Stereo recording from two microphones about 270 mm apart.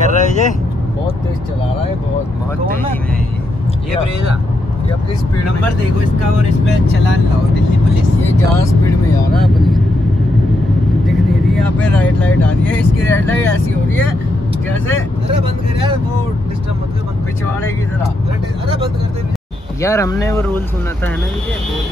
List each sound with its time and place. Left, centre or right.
0.0 s vehicle: left
9.3 s speech: centre
11.1 s speech: centre
19.8 s speech: centre